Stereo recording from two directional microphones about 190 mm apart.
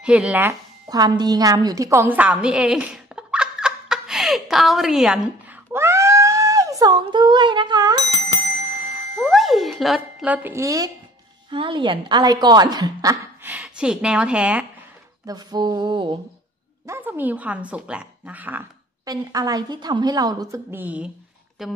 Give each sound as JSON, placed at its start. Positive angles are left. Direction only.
{"t": 0.0, "sound": "a sound", "side_deg": -5}
{"t": 9.2, "sound": "a sound", "side_deg": 0}
{"t": 11.5, "sound": "a woman's voice", "side_deg": -25}
{"t": 15.2, "sound": "a woman's voice", "side_deg": -20}
{"t": 16.8, "sound": "speech", "side_deg": -15}
{"t": 19.0, "sound": "a woman's voice", "side_deg": -20}